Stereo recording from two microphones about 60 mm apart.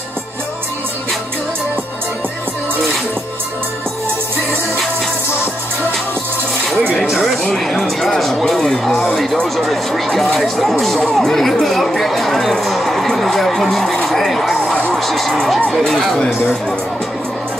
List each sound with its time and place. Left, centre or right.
7.5 s speech: centre